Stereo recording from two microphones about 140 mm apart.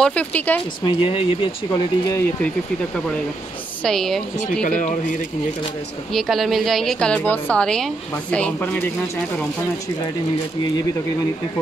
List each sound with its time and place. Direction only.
0.0 s speech: 10° left (ahead or behind)
0.8 s speech: 40° left (ahead or behind)
1.7 s speech: 25° left (ahead or behind)
3.8 s a woman's voice: 5° left (ahead or behind)
4.6 s speech: 65° left (ahead or behind)
6.1 s a woman's voice: centre (ahead or behind)